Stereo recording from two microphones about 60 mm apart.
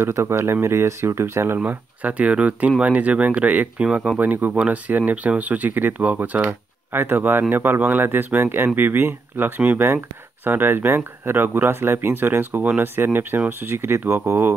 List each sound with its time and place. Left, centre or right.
0.0 s speech: right
1.6 s speech: right
4.2 s speech: right
6.9 s speech: right